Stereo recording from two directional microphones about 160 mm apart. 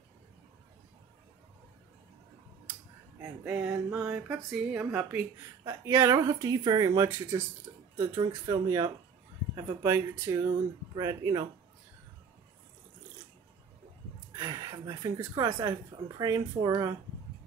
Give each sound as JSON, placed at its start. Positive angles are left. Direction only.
{"t": 3.2, "sound": "speech", "side_deg": -5}
{"t": 7.7, "sound": "a sound", "side_deg": -20}
{"t": 8.0, "sound": "speech", "side_deg": -25}
{"t": 14.3, "sound": "speech", "side_deg": -25}